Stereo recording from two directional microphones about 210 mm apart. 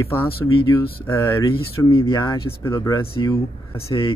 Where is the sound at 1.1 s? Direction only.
10° left (ahead or behind).